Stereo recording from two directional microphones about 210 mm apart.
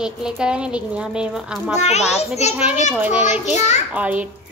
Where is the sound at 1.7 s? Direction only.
30° left (ahead or behind).